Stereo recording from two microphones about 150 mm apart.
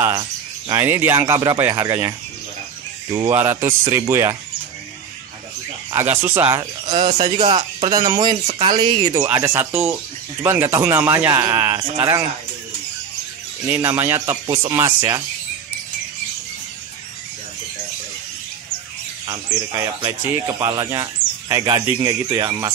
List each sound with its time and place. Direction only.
0.0 s cricket: 25° right (ahead or behind)
0.7 s speech: 15° right (ahead or behind)
6.0 s speech: 15° right (ahead or behind)
6.9 s speech: 35° right (ahead or behind)
13.7 s speech: 20° right (ahead or behind)
19.2 s speech: 20° right (ahead or behind)